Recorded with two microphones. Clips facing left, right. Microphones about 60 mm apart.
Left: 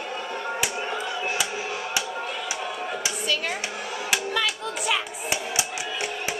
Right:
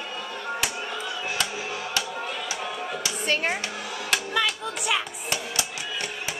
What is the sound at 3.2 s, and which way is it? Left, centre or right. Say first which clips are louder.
Speech: right 4 dB; right.